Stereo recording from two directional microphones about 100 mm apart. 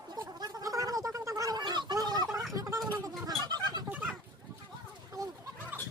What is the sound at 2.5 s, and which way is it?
Gargling, 35° right (ahead or behind).